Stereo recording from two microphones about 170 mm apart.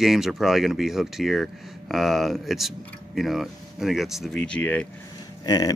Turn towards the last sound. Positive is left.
turn(degrees=20)  # may be behind; listen again after turning